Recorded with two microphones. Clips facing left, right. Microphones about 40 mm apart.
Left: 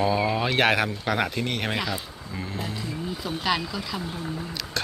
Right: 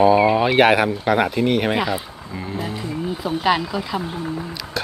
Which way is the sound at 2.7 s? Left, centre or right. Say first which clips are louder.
Right 6 dB; right.